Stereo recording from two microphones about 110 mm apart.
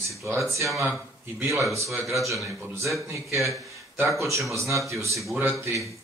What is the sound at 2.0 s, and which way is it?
Speech, 30° right (ahead or behind).